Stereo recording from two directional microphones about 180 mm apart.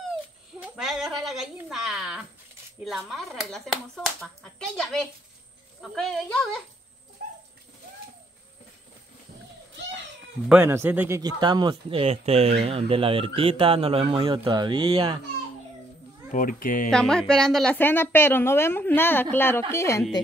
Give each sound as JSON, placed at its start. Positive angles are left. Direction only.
{"t": 0.6, "sound": "a sound", "side_deg": 0}
{"t": 2.8, "sound": "speech", "side_deg": 0}
{"t": 10.5, "sound": "speech", "side_deg": -15}
{"t": 16.3, "sound": "speech", "side_deg": 50}
{"t": 16.9, "sound": "a woman's voice", "side_deg": 5}